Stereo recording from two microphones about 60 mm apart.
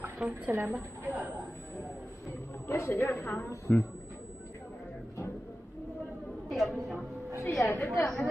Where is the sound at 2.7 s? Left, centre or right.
Left.